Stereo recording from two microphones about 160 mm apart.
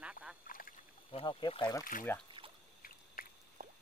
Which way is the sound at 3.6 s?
60° right (ahead or behind).